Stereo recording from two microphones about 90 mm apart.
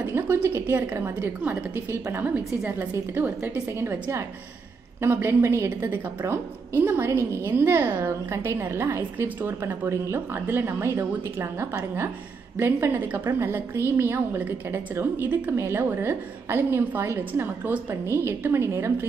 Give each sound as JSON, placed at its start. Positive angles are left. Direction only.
{"t": 0.0, "sound": "a woman's voice", "side_deg": -25}